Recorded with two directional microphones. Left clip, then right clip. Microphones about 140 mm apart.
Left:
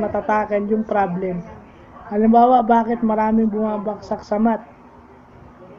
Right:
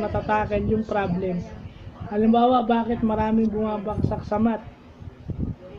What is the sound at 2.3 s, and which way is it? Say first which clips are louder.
Speech: left 6 dB; 15° right (ahead or behind).